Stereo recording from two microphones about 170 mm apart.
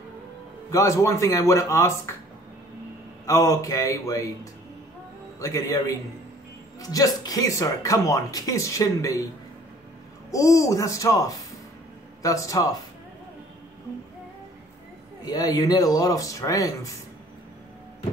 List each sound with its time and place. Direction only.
0.7 s speech: 20° left (ahead or behind)
3.3 s speech: 20° left (ahead or behind)
5.4 s speech: 20° left (ahead or behind)
10.3 s speech: 20° left (ahead or behind)
15.2 s speech: 20° left (ahead or behind)